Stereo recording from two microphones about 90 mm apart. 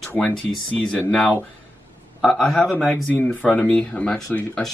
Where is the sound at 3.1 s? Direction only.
15° left (ahead or behind).